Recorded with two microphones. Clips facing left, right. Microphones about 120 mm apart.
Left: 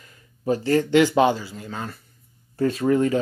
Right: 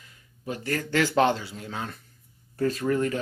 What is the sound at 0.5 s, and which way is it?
Speech, 25° left (ahead or behind).